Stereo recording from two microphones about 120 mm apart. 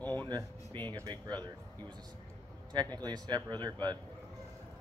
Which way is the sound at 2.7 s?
35° right (ahead or behind).